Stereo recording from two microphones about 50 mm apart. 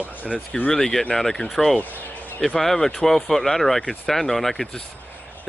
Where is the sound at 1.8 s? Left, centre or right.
Left.